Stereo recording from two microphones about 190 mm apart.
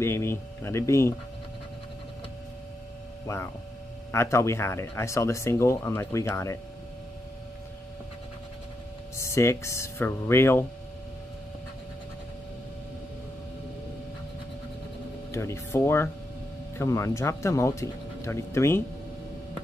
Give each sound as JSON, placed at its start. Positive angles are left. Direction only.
{"t": 0.0, "sound": "speech", "side_deg": 15}
{"t": 3.3, "sound": "speech", "side_deg": 15}
{"t": 9.1, "sound": "speech", "side_deg": 15}
{"t": 15.3, "sound": "speech", "side_deg": 15}